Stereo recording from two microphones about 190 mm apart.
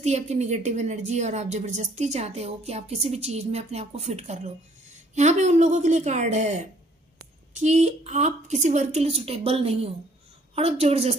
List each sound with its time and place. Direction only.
0.0 s a woman's voice: 35° right (ahead or behind)